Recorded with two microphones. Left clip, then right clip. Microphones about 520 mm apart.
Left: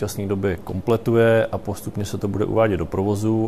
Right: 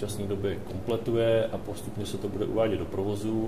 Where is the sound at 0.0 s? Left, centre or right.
Left.